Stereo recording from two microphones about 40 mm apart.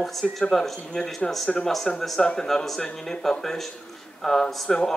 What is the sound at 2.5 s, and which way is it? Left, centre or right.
Speech, centre.